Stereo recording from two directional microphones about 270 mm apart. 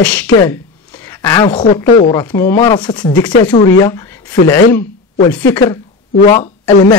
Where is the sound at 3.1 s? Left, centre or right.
Left.